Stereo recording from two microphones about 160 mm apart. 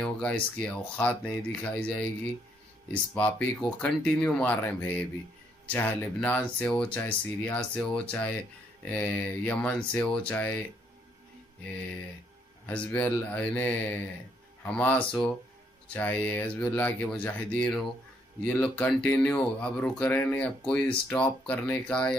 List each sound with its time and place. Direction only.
0.0 s speech: 5° left (ahead or behind)
12.6 s speech: 10° left (ahead or behind)